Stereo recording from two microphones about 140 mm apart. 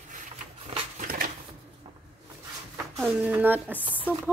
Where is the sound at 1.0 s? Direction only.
90° right.